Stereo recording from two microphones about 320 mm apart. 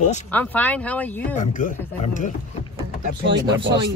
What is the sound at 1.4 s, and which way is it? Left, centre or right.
Speech, left.